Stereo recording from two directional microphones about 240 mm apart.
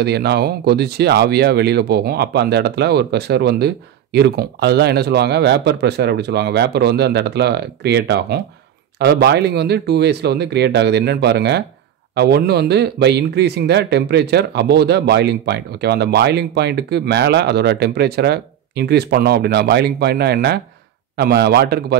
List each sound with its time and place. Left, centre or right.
0.0 s speech: right